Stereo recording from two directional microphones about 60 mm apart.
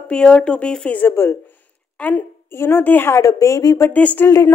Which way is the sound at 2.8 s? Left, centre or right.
Left.